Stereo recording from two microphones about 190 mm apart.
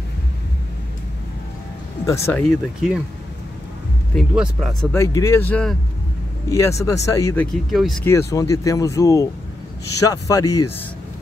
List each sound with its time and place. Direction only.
2.0 s speech: 15° left (ahead or behind)
2.4 s speech: centre (ahead or behind)
4.1 s speech: centre (ahead or behind)
4.9 s speech: 15° left (ahead or behind)
7.7 s speech: centre (ahead or behind)
8.0 s speech: 15° left (ahead or behind)